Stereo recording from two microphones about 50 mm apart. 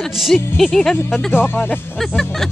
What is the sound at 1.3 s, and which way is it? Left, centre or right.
Speech, left.